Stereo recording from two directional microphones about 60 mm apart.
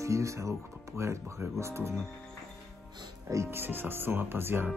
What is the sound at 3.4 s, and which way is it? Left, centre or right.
Speech, right.